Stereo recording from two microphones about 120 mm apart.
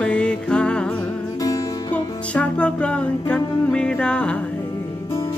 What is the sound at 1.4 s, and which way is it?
Music, 30° left (ahead or behind).